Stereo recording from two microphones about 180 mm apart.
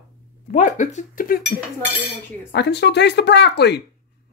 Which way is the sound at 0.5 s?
45° left (ahead or behind).